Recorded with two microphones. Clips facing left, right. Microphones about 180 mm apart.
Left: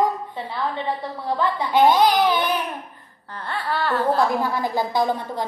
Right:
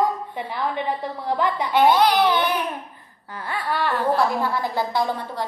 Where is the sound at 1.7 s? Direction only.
15° left (ahead or behind).